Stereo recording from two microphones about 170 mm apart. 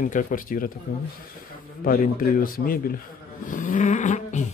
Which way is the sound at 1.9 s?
55° left (ahead or behind).